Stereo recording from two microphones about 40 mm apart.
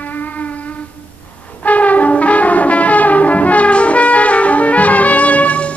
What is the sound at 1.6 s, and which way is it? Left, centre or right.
Brass instrument, left.